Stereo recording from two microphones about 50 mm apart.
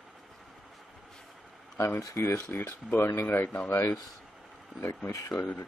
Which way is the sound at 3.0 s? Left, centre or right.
Left.